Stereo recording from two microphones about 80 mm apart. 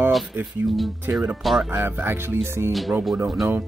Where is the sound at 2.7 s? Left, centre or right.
Centre.